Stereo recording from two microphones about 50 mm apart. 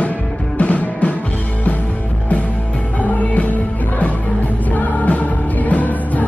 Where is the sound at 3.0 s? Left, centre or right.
Left.